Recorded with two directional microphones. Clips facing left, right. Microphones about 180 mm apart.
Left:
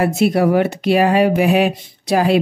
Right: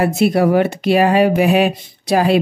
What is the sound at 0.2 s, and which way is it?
Speech, 40° right (ahead or behind).